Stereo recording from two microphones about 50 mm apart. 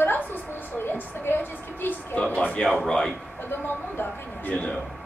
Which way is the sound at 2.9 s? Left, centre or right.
Centre.